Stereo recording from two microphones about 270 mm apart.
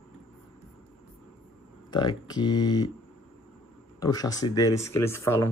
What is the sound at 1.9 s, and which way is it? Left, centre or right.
Speech, centre.